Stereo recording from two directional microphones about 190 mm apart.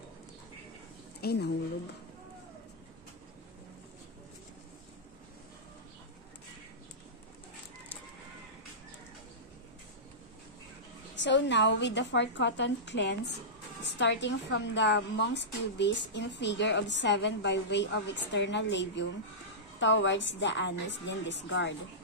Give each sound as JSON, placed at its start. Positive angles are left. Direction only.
{"t": 1.2, "sound": "a woman's voice", "side_deg": 60}
{"t": 11.1, "sound": "a woman's voice", "side_deg": 70}